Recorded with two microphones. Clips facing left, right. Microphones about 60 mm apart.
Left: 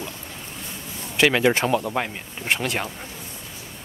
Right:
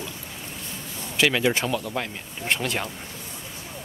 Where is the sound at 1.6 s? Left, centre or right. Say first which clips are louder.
Left 5 dB; left.